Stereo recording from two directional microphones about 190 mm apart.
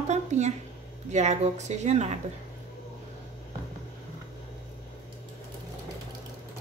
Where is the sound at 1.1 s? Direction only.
35° right (ahead or behind).